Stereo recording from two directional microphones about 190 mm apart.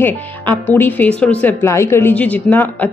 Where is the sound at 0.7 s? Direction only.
10° left (ahead or behind).